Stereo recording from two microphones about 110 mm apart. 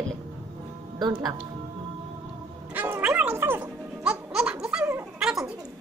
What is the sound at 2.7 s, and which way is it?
Speech, 15° right (ahead or behind).